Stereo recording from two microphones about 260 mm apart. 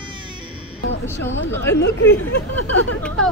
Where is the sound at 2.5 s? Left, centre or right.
Left.